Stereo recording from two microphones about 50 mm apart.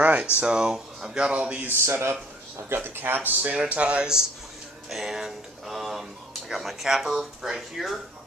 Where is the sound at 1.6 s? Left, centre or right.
Right; by 4.2 s centre.